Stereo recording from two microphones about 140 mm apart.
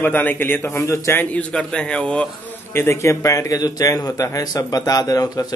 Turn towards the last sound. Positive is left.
turn(degrees=25)  # may be behind; listen again after turning